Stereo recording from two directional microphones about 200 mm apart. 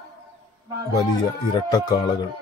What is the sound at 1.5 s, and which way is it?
Speech, 20° left (ahead or behind).